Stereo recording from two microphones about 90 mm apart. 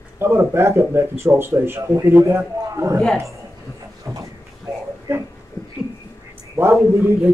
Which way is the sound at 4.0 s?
35° right (ahead or behind).